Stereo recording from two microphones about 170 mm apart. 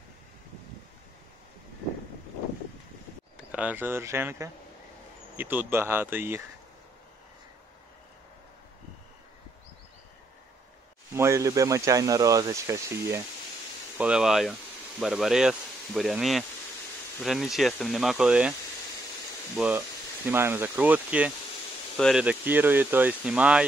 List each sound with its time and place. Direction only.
3.5 s speech: 10° right (ahead or behind)
11.1 s speech: 15° right (ahead or behind)
13.9 s speech: 5° right (ahead or behind)
19.5 s speech: 10° right (ahead or behind)
21.9 s speech: 5° left (ahead or behind)
22.2 s speech: 10° right (ahead or behind)